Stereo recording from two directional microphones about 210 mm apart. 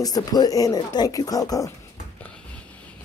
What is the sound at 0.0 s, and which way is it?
Speech, 20° left (ahead or behind).